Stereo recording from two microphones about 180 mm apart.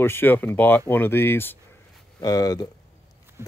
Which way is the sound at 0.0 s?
10° left (ahead or behind).